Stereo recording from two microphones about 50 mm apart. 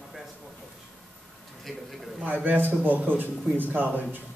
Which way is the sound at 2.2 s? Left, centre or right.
Right.